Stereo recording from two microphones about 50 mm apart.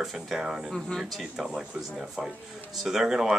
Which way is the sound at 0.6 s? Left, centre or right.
Centre.